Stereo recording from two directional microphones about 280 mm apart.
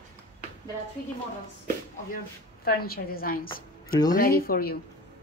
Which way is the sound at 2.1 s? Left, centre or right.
Left.